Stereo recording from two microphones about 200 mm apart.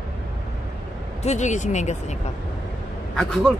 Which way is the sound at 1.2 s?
35° left (ahead or behind).